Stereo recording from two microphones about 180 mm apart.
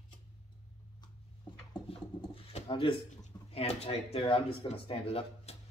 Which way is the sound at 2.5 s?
30° left (ahead or behind).